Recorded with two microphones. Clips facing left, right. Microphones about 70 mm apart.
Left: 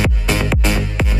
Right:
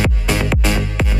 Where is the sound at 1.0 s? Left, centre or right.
Centre.